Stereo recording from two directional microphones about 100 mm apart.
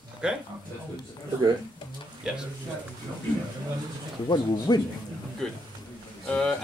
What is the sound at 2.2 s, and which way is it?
Speech, 5° right (ahead or behind).